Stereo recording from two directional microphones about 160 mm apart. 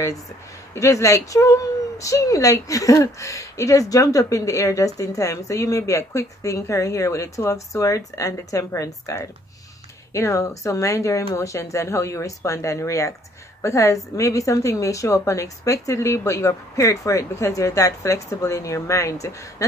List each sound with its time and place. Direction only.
0.7 s speech: 20° left (ahead or behind)